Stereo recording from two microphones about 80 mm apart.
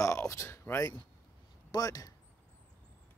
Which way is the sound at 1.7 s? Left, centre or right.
Left.